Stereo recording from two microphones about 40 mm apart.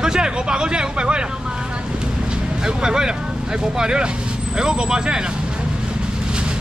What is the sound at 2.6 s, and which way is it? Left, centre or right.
Speech, centre.